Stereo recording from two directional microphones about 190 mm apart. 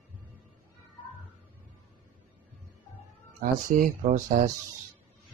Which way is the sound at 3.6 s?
45° right (ahead or behind).